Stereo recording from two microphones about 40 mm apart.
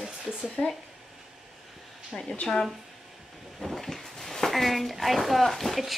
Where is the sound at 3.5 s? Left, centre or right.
Centre.